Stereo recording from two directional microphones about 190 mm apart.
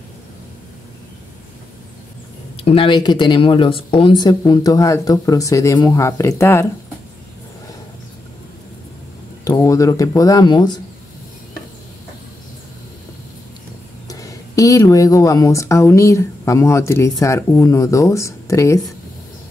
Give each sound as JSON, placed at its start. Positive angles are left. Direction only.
{"t": 2.5, "sound": "speech", "side_deg": 30}
{"t": 9.4, "sound": "speech", "side_deg": 20}
{"t": 14.0, "sound": "speech", "side_deg": 20}